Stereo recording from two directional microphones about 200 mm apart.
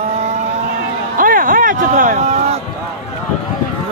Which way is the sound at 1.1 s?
45° right (ahead or behind).